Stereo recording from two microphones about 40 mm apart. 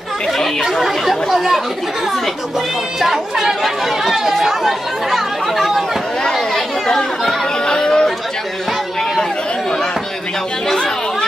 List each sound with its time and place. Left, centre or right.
0.7 s speech: centre
3.0 s speech: centre
6.3 s chatter: centre
7.6 s speech: centre